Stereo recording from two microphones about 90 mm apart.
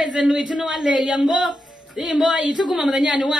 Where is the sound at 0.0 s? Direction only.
10° right (ahead or behind).